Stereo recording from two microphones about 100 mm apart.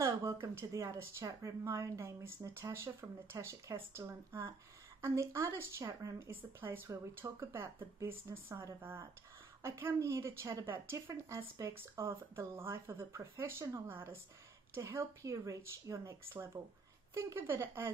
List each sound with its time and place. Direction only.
0.0 s speech: 30° right (ahead or behind)
9.6 s speech: 25° right (ahead or behind)